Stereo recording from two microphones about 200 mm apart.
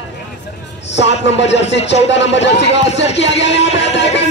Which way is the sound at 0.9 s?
60° left (ahead or behind).